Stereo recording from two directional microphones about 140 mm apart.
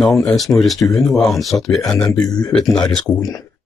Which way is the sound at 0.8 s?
Centre (ahead or behind).